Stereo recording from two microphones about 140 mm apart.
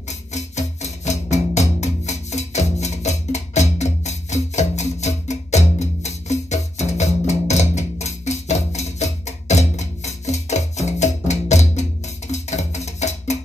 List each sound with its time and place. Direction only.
0.3 s music: 55° left (ahead or behind)